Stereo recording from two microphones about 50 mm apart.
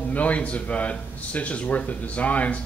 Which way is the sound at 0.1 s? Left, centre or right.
Left.